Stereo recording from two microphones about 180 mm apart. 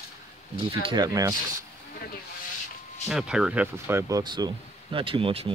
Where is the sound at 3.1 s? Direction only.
5° right (ahead or behind).